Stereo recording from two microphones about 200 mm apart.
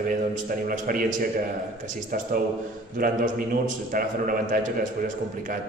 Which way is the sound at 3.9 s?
40° right (ahead or behind).